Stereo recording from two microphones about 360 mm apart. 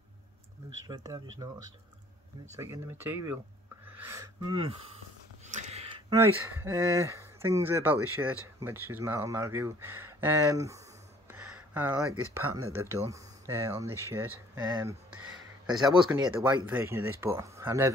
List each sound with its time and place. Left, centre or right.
0.8 s speech: centre
2.5 s speech: centre
11.3 s a sound: centre
12.4 s speech: right
12.7 s speech: centre